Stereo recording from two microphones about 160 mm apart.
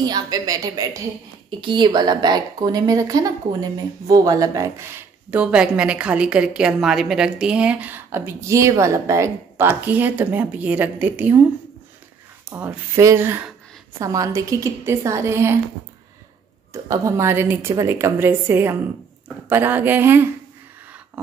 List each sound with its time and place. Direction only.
0.1 s a woman's voice: 20° right (ahead or behind)
5.3 s a woman's voice: 5° right (ahead or behind)
12.4 s a woman's voice: 15° right (ahead or behind)
16.7 s a woman's voice: 20° right (ahead or behind)